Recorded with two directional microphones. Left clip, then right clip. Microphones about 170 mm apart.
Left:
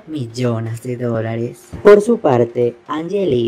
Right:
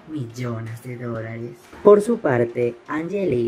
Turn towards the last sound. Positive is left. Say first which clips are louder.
# left 5 dB
turn(degrees=20)  # may be behind; listen again after turning